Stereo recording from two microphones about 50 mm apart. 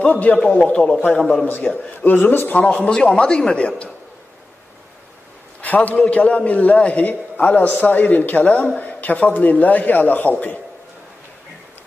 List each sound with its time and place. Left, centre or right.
0.0 s a man's voice: left
1.6 s a man's voice: centre
2.0 s a man's voice: left
2.8 s a man's voice: centre
5.6 s a sound: left
6.0 s a man's voice: left